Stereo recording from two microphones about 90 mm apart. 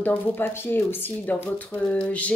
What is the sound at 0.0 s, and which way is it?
Speech, 20° left (ahead or behind).